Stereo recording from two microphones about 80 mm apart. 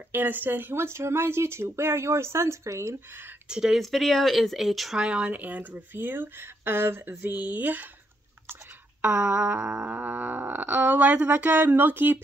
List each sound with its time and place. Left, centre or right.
0.1 s speech: right
3.4 s a sound: centre
3.8 s speech: centre
5.0 s speech: centre
9.0 s a sound: centre
9.9 s speech: right